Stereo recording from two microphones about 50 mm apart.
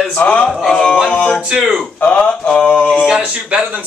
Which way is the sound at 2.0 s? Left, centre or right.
Left.